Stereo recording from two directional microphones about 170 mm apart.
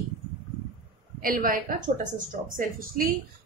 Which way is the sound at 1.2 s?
55° right (ahead or behind).